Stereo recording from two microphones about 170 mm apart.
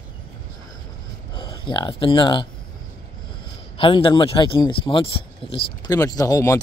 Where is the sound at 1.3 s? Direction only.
25° left (ahead or behind).